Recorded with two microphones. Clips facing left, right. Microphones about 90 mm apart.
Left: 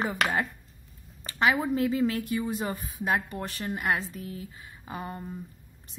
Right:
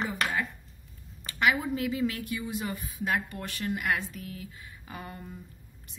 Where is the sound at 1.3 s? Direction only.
30° left (ahead or behind).